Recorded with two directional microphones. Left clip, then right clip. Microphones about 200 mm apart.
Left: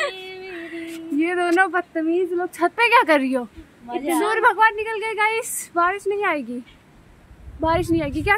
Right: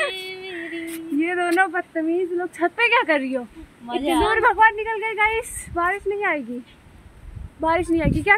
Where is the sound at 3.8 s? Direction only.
45° right (ahead or behind).